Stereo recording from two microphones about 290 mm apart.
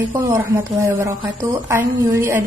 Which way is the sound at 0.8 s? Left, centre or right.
Centre.